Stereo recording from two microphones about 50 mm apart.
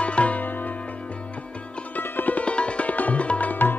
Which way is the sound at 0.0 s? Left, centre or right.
Left.